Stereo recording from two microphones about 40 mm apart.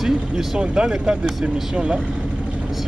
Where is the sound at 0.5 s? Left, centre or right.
Right.